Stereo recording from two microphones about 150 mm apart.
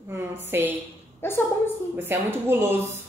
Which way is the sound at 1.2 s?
15° left (ahead or behind).